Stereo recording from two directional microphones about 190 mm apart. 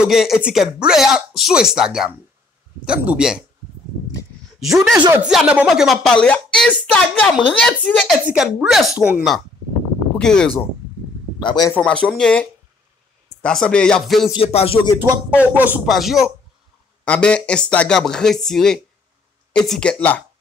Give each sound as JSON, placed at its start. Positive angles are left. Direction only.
{"t": 0.0, "sound": "speech", "side_deg": 0}
{"t": 5.2, "sound": "speech", "side_deg": -5}
{"t": 11.3, "sound": "a man's voice", "side_deg": 25}
{"t": 11.7, "sound": "speech", "side_deg": 5}
{"t": 14.3, "sound": "music", "side_deg": 30}
{"t": 15.0, "sound": "speech", "side_deg": -10}